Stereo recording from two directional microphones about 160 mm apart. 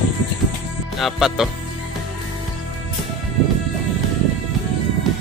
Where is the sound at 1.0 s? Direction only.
Centre (ahead or behind).